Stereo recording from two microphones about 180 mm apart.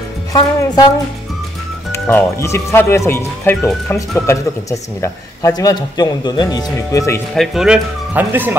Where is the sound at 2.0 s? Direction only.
15° left (ahead or behind).